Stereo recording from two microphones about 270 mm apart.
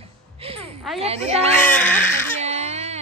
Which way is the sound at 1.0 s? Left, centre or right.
Right.